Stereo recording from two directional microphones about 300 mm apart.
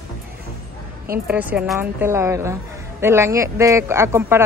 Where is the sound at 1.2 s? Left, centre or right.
Centre.